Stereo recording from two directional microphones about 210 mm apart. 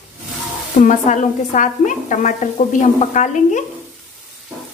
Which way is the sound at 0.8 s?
35° left (ahead or behind).